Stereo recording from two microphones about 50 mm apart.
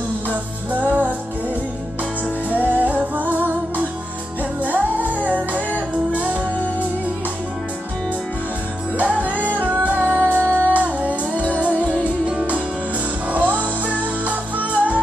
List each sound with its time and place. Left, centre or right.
0.3 s music: right
2.5 s music: right
8.9 s music: right